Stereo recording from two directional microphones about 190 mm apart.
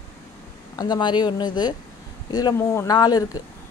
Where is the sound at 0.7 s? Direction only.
20° left (ahead or behind).